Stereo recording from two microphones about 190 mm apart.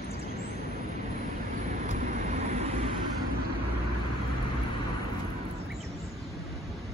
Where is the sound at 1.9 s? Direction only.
40° right (ahead or behind).